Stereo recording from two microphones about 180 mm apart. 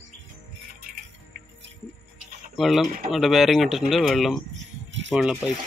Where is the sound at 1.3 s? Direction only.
50° right (ahead or behind).